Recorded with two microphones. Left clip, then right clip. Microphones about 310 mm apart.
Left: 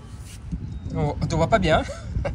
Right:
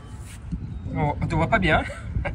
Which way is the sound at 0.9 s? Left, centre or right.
Centre.